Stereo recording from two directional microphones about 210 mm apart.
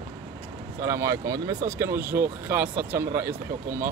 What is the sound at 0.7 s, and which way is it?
Speech, 15° right (ahead or behind).